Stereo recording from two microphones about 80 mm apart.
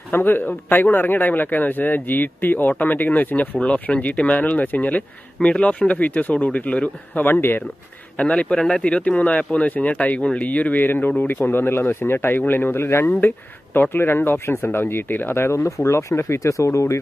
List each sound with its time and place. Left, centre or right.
0.1 s speech: left
8.2 s speech: centre; by 17.0 s left